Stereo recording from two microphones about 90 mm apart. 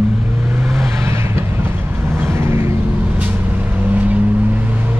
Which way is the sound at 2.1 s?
30° right (ahead or behind).